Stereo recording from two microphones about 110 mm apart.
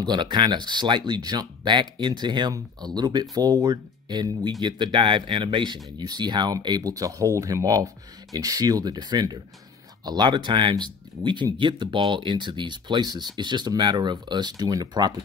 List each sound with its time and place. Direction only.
0.0 s speech: 40° right (ahead or behind)